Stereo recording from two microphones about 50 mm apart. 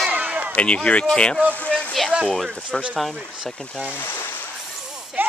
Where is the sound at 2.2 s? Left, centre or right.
Centre.